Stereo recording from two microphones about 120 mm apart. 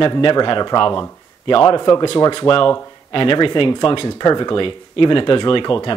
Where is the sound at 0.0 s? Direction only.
45° left (ahead or behind).